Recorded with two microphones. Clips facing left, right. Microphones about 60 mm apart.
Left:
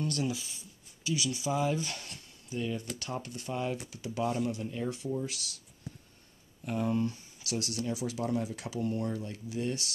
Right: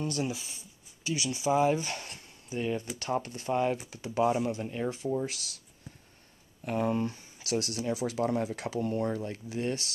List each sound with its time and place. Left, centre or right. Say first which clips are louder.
0.0 s speech: even; right
2.6 s speech: right 4 dB; right
4.8 s speech: right 4 dB; right
6.6 s speech: right 3 dB; right
6.9 s speech: right 1 dB; right